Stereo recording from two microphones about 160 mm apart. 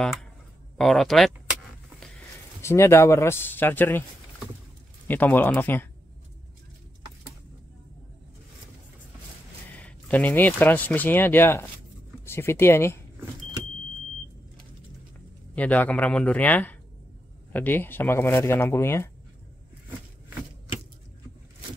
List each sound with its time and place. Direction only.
0.0 s speech: 5° left (ahead or behind)
2.6 s speech: 15° left (ahead or behind)
5.0 s speech: 10° left (ahead or behind)
9.7 s speech: 10° left (ahead or behind)
15.5 s speech: 10° left (ahead or behind)